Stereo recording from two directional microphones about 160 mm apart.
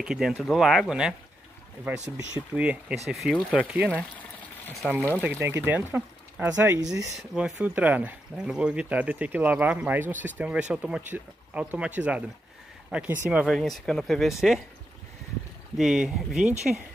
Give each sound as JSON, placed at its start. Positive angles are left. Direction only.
{"t": 0.0, "sound": "speech", "side_deg": -5}
{"t": 5.2, "sound": "speech", "side_deg": -15}
{"t": 7.2, "sound": "speech", "side_deg": -5}
{"t": 15.8, "sound": "speech", "side_deg": -5}